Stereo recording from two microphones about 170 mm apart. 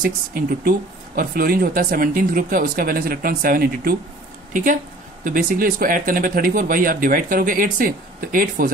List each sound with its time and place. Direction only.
0.0 s speech: 60° right (ahead or behind)
5.2 s speech: 55° right (ahead or behind)